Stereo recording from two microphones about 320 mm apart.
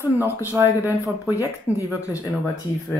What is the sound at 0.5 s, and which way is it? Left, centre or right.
Speech, centre.